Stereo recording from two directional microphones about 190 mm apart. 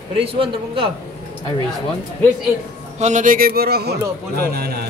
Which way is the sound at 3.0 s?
40° right (ahead or behind).